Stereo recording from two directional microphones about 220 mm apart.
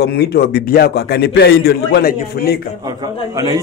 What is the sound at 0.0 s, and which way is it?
Speech, 45° left (ahead or behind).